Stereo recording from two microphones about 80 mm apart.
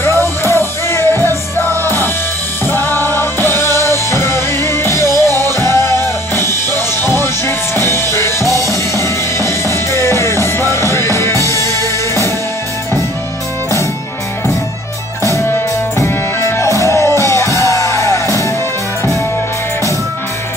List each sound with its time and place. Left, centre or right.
0.0 s music: left
2.7 s music: left
5.3 s music: right
5.7 s music: left
15.2 s music: left